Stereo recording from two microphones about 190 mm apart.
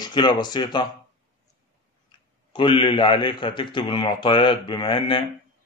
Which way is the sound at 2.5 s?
25° left (ahead or behind).